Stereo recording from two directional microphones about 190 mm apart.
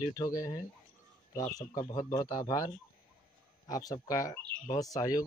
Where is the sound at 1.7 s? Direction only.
20° left (ahead or behind).